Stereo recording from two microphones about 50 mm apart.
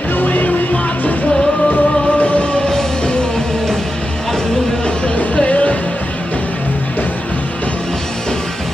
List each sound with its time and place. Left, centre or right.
0.1 s music: left
1.7 s music: left
4.8 s music: left